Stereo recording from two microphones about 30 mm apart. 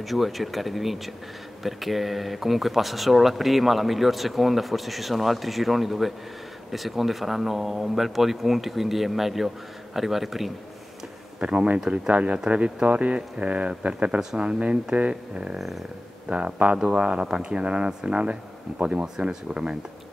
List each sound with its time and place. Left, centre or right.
0.0 s speech: centre
11.4 s speech: right
19.1 s speech: right